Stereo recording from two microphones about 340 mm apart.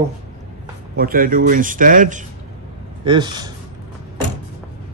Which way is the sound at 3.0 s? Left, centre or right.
Centre.